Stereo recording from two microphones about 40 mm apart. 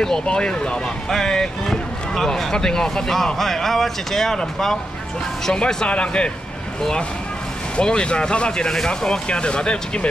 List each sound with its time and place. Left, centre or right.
0.0 s speech: centre
0.4 s speech: left
5.5 s speech: centre
7.7 s speech: left